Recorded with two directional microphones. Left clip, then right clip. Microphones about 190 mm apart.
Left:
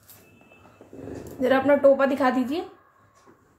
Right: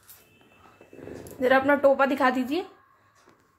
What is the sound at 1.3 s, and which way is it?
A woman's voice, 45° right (ahead or behind).